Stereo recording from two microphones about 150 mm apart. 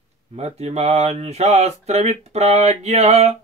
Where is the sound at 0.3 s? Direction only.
45° right (ahead or behind).